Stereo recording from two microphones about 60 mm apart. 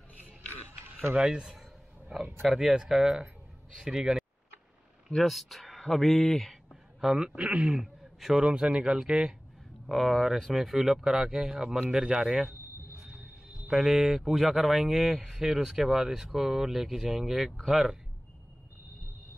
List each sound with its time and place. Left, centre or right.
1.1 s a sound: centre
2.4 s speech: centre
5.1 s speech: centre
7.2 s speech: centre
7.8 s a sound: centre
8.5 s speech: centre
9.8 s speech: centre
13.7 s speech: centre